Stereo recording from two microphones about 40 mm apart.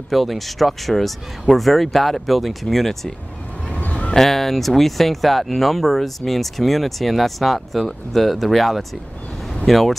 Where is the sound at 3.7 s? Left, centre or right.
Left.